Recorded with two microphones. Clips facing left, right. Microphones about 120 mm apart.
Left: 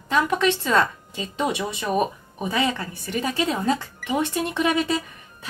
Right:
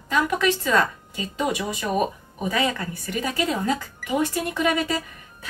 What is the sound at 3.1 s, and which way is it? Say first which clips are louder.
A woman's voice: left 1 dB; 30° left (ahead or behind).